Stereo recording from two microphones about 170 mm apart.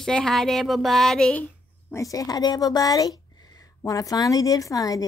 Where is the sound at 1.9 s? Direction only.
20° left (ahead or behind).